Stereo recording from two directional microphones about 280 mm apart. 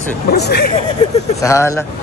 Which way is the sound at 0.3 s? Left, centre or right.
Left.